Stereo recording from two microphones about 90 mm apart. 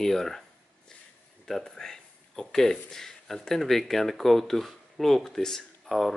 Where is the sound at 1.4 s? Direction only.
5° left (ahead or behind).